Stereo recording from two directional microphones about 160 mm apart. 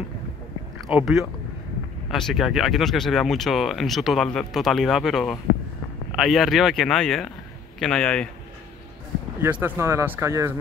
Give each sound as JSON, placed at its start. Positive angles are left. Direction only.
{"t": 0.9, "sound": "speech", "side_deg": 0}
{"t": 9.4, "sound": "speech", "side_deg": -10}